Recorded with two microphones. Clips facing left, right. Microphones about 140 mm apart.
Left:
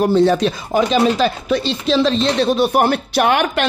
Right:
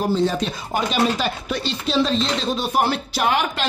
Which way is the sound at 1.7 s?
90° left.